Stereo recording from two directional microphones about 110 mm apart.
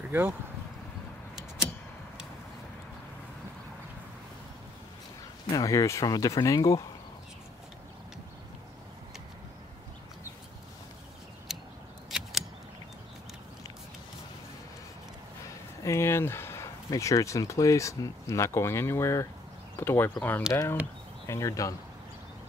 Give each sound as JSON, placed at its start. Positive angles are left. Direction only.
{"t": 0.1, "sound": "speech", "side_deg": -20}
{"t": 5.5, "sound": "speech", "side_deg": 30}
{"t": 11.5, "sound": "a sound", "side_deg": -5}
{"t": 15.8, "sound": "speech", "side_deg": 25}
{"t": 21.3, "sound": "speech", "side_deg": 30}